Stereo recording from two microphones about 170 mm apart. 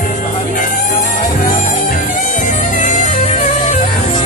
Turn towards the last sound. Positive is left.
turn(degrees=45)  # may be behind; listen again after turning